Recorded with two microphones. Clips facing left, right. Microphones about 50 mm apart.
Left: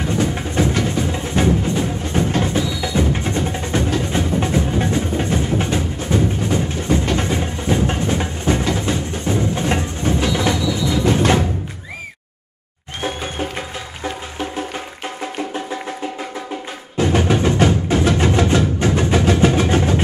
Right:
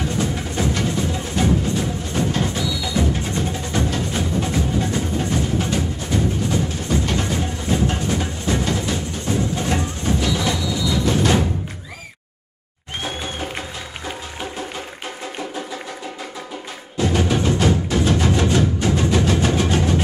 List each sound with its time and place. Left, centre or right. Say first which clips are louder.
0.2 s music: left 5 dB; left
1.3 s music: left 3 dB; left
16.9 s music: left 3 dB; left
18.8 s a sound: left 2 dB; left